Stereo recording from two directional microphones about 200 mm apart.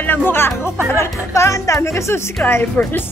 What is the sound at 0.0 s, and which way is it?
A woman's voice, 10° left (ahead or behind).